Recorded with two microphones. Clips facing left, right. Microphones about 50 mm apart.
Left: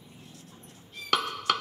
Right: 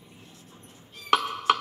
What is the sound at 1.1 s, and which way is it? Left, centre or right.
Chopping, centre.